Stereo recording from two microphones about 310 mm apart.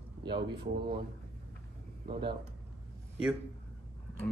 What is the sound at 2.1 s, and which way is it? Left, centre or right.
Speech, centre.